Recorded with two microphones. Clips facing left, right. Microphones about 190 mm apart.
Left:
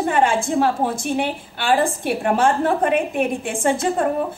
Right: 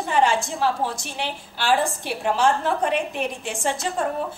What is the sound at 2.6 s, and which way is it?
A woman's voice, 55° left (ahead or behind).